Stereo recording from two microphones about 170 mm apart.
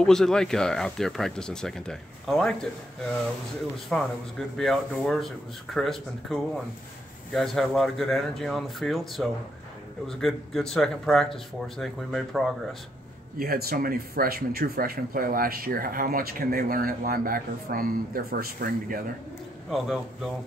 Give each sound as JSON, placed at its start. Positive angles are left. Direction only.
{"t": 0.0, "sound": "speech", "side_deg": 5}
{"t": 3.9, "sound": "speech", "side_deg": 5}
{"t": 13.4, "sound": "speech", "side_deg": -60}
{"t": 19.7, "sound": "speech", "side_deg": 0}